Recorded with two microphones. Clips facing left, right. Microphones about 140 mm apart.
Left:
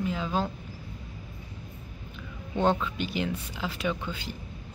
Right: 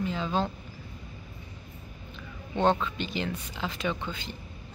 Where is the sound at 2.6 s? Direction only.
5° left (ahead or behind).